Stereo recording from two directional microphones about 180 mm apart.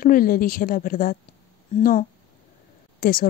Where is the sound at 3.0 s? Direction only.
50° left (ahead or behind).